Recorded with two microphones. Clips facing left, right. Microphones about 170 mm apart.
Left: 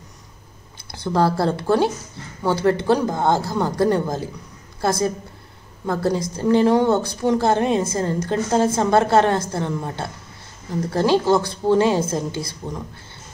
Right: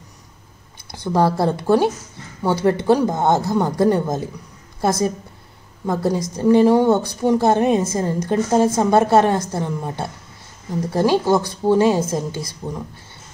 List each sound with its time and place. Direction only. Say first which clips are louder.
0.9 s a woman's voice: right 1 dB; 15° right (ahead or behind)
5.9 s a woman's voice: right 1 dB; 15° right (ahead or behind)